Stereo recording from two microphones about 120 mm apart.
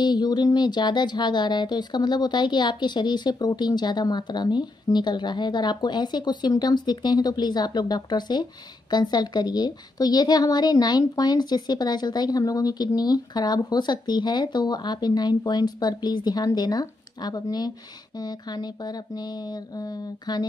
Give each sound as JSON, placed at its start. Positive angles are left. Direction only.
{"t": 0.0, "sound": "a woman's voice", "side_deg": 35}